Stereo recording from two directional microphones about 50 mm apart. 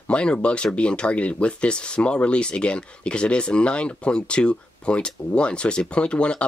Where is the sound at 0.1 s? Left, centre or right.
Left.